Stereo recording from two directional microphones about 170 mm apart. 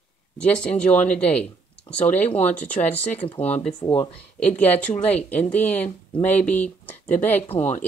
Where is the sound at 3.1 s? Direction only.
35° left (ahead or behind).